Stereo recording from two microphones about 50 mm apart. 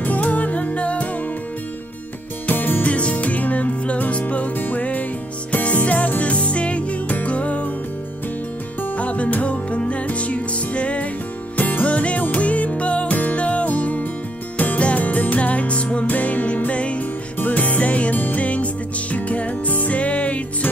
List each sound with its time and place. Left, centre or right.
0.0 s music: left
2.4 s music: left
8.8 s music: left
11.5 s music: left